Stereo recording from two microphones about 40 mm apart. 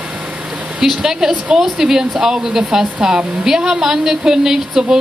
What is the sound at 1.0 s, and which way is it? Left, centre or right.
Speech, centre.